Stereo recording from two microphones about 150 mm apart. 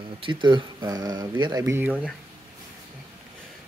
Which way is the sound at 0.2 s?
30° right (ahead or behind).